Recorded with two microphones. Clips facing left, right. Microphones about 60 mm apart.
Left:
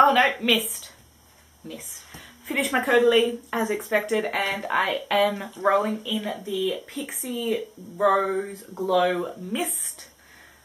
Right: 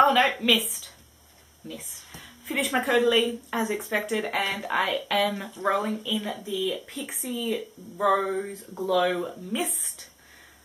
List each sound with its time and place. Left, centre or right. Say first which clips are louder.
0.0 s a woman's voice: left 2 dB; centre